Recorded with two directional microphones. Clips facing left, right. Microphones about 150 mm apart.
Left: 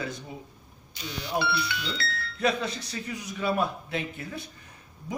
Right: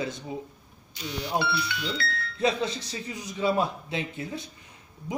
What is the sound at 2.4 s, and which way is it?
A man's voice, 20° right (ahead or behind).